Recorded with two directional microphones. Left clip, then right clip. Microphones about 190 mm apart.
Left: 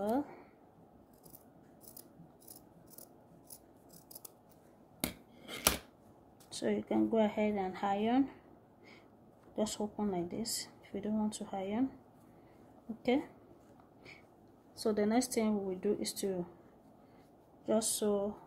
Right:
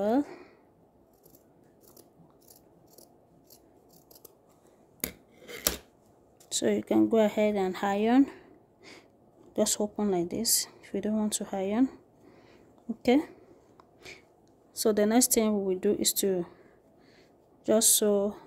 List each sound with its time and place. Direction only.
0.0 s a sound: 65° right (ahead or behind)
5.0 s scissors: 15° right (ahead or behind)
6.5 s speech: 65° right (ahead or behind)
13.0 s speech: 60° right (ahead or behind)
14.8 s speech: 55° right (ahead or behind)
17.6 s speech: 65° right (ahead or behind)